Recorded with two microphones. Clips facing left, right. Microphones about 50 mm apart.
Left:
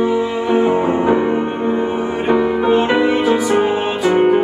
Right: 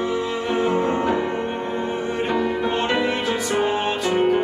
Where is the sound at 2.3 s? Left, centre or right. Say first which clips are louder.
Left 10 dB; centre.